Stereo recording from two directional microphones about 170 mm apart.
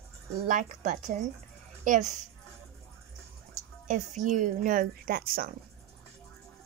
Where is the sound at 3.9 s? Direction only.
50° right (ahead or behind).